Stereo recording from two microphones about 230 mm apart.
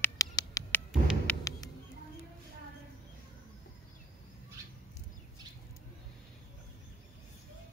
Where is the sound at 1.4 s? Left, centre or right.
Centre.